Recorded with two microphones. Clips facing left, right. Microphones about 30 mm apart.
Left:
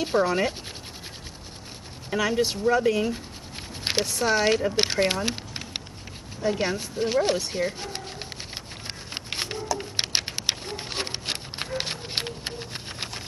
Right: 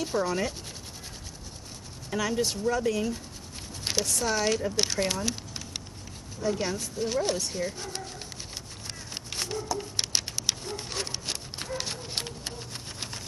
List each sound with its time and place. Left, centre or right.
0.0 s speech: left
2.0 s speech: left
9.1 s a sound: left